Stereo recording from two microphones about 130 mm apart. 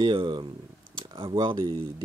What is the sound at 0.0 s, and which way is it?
Speech, 40° right (ahead or behind).